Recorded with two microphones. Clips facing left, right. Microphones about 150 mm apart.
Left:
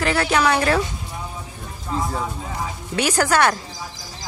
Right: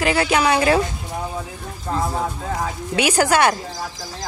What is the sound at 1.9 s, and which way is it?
Speech, 60° right (ahead or behind).